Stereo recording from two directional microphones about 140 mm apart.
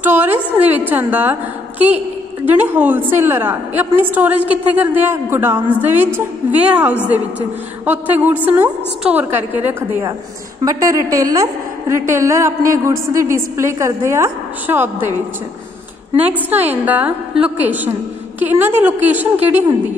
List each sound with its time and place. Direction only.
0.0 s a sound: 15° right (ahead or behind)
0.6 s a woman's voice: 10° right (ahead or behind)
16.3 s a woman's voice: 10° right (ahead or behind)